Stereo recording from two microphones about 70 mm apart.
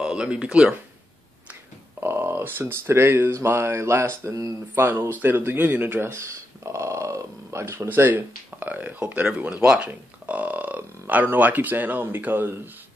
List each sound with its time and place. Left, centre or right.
0.0 s speech: centre
2.0 s speech: right
4.7 s speech: right